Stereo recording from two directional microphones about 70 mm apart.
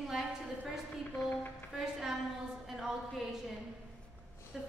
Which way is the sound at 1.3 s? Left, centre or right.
Left.